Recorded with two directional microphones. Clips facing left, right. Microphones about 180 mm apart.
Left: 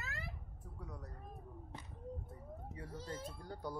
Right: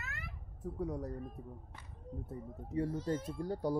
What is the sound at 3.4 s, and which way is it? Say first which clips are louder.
Speech: right 12 dB; 30° right (ahead or behind).